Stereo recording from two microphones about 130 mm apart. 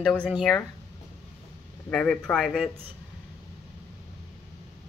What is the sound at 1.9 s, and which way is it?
Speech, 5° left (ahead or behind).